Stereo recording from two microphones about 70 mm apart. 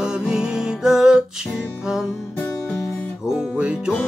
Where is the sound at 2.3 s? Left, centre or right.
Centre.